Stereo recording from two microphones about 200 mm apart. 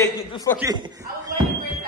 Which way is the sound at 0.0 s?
15° left (ahead or behind).